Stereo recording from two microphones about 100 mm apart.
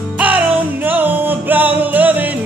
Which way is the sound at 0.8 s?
20° right (ahead or behind).